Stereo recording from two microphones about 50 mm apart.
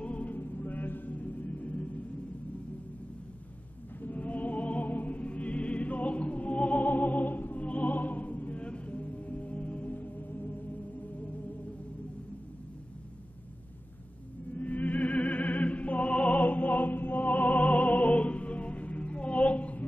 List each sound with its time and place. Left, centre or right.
0.0 s music: left
4.0 s music: left
14.5 s music: left